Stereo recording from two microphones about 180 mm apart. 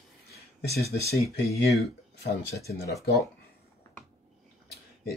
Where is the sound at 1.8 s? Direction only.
60° left (ahead or behind).